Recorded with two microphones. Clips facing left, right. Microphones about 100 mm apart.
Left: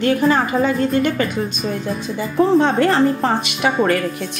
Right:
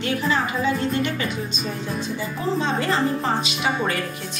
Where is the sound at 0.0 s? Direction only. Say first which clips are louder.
Left 7 dB; 45° left (ahead or behind).